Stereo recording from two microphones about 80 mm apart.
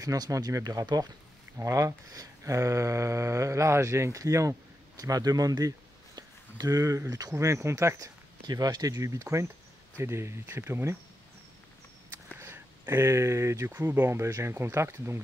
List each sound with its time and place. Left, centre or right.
0.0 s speech: right
1.6 s speech: right
7.3 s speech: right
8.5 s speech: right
12.4 s speech: right